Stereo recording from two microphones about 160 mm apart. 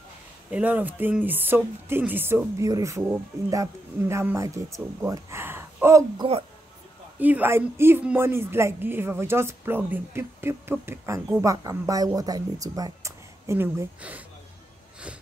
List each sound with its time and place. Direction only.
0.5 s speech: 10° right (ahead or behind)